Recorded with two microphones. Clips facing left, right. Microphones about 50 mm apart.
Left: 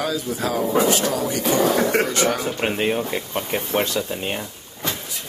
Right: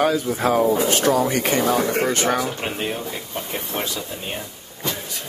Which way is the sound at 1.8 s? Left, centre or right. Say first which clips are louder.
Left 2 dB; left.